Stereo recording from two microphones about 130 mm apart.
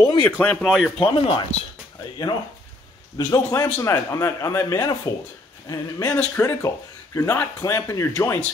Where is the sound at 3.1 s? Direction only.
30° left (ahead or behind).